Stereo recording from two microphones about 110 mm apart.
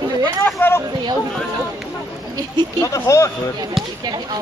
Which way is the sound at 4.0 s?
40° right (ahead or behind).